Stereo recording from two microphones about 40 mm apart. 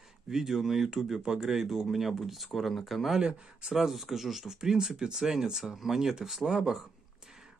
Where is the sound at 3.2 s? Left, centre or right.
Right.